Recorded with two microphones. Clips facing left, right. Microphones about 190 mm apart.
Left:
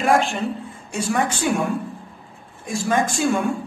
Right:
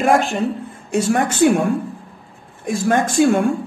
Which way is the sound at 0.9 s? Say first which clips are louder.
Right 5 dB; 60° right (ahead or behind).